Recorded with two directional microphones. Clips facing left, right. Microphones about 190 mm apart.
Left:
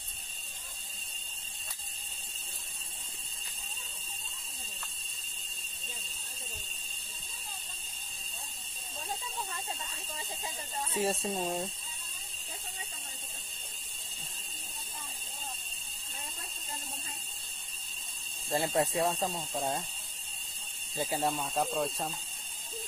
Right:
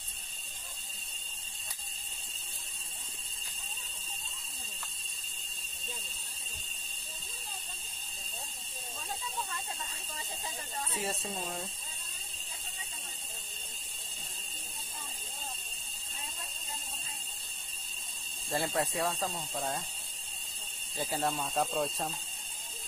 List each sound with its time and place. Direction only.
10.9 s speech: 30° left (ahead or behind)
18.5 s speech: 20° left (ahead or behind)
20.9 s speech: 15° left (ahead or behind)